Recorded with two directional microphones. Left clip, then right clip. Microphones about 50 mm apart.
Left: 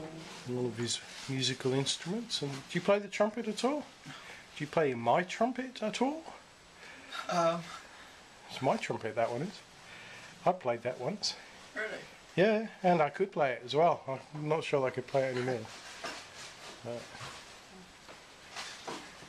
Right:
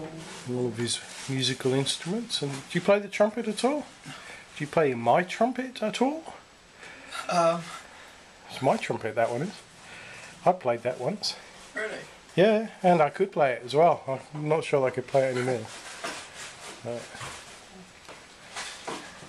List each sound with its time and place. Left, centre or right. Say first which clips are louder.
0.6 s speech: right 6 dB; centre
10.4 s speech: right 7 dB; centre
11.7 s a sound: right 5 dB; centre
12.4 s speech: right 6 dB; centre
15.6 s a sound: right 6 dB; right
16.9 s speech: right 6 dB; centre